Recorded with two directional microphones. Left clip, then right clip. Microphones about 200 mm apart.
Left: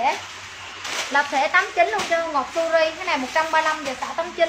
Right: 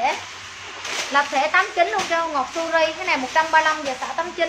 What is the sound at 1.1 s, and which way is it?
Speech, 15° right (ahead or behind).